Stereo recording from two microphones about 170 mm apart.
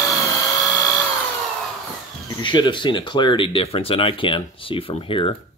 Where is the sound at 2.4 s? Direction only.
25° left (ahead or behind).